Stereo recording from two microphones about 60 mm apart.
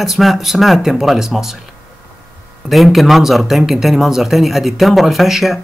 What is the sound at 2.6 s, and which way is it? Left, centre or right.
Speech, centre.